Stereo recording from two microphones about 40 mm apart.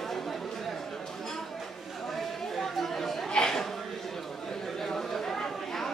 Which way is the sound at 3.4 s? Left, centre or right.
Centre.